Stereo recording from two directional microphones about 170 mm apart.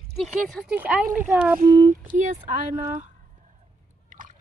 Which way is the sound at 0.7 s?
10° right (ahead or behind).